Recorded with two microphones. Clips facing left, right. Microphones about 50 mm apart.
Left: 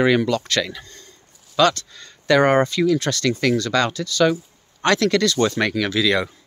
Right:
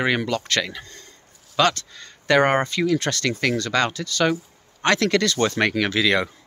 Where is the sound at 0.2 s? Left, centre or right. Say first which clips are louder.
Left 3 dB; right.